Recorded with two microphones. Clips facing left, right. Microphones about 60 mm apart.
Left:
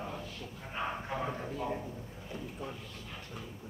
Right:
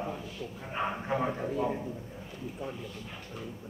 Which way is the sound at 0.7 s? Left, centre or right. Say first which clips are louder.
Right 5 dB; right.